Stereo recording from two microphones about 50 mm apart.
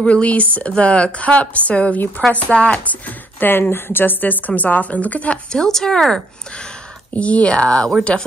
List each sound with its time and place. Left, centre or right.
0.0 s speech: left
5.5 s speech: centre
7.2 s speech: left